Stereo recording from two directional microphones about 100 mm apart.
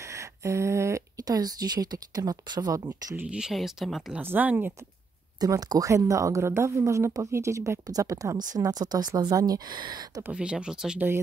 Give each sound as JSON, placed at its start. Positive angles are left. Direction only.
{"t": 0.0, "sound": "speech", "side_deg": -30}
{"t": 3.2, "sound": "speech", "side_deg": -10}
{"t": 4.2, "sound": "speech", "side_deg": -20}
{"t": 5.4, "sound": "speech", "side_deg": -40}
{"t": 10.3, "sound": "speech", "side_deg": -10}